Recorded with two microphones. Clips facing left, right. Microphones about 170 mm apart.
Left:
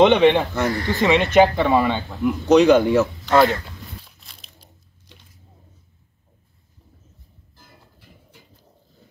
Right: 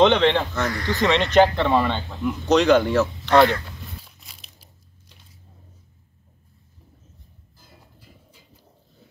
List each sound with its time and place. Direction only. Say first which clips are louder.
0.0 s speech: left 3 dB; 10° left (ahead or behind)
0.7 s speech: left 3 dB; 30° left (ahead or behind)
1.0 s speech: left 2 dB; 10° left (ahead or behind)
4.0 s biting: even; 5° right (ahead or behind)
7.5 s music: left 1 dB; 55° left (ahead or behind)